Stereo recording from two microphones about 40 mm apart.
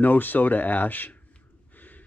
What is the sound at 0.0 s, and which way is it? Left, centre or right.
Speech, left.